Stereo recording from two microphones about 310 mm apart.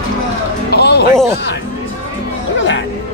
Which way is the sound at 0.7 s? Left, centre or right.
Left.